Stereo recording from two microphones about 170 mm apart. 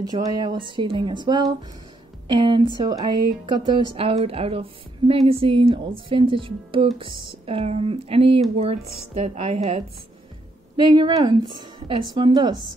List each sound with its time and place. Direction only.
0.0 s a woman's voice: 25° right (ahead or behind)
10.8 s a woman's voice: 25° right (ahead or behind)